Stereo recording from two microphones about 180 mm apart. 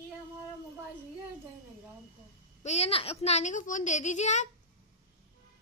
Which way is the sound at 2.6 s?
35° left (ahead or behind).